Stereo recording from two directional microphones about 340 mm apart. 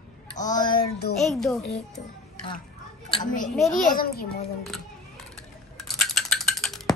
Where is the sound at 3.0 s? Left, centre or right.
Centre.